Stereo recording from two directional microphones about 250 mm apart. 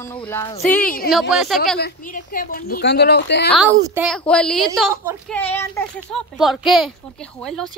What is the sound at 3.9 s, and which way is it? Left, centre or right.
A woman's voice, centre.